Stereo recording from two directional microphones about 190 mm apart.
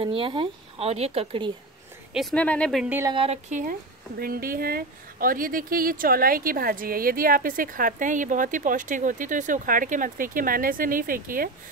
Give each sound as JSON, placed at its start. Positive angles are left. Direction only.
{"t": 0.0, "sound": "speech", "side_deg": -25}
{"t": 2.1, "sound": "speech", "side_deg": 5}
{"t": 2.9, "sound": "speech", "side_deg": -15}
{"t": 3.2, "sound": "speech", "side_deg": -35}
{"t": 4.2, "sound": "speech", "side_deg": -50}